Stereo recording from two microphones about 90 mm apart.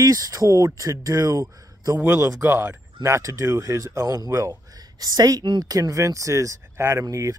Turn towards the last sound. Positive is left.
turn(degrees=-35)  # may be behind; listen again after turning